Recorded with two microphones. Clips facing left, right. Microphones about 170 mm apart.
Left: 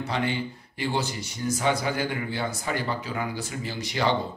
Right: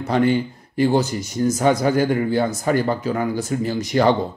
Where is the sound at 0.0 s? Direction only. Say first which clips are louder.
Right 10 dB; 45° right (ahead or behind).